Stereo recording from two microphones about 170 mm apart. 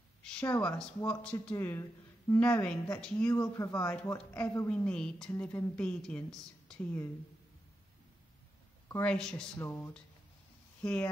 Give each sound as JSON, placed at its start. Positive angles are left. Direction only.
{"t": 0.2, "sound": "speech", "side_deg": 5}
{"t": 2.4, "sound": "speech", "side_deg": 5}
{"t": 3.5, "sound": "a woman's voice", "side_deg": 20}
{"t": 9.0, "sound": "a woman's voice", "side_deg": 5}